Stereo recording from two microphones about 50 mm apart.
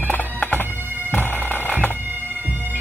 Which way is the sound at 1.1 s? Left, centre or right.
Left.